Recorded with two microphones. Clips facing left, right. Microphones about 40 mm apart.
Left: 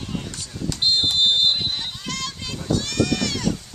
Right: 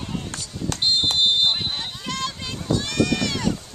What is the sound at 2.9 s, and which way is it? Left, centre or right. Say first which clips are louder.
Run: right 2 dB; centre.